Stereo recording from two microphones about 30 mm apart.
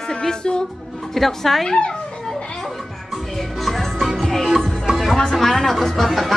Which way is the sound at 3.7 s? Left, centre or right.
Centre.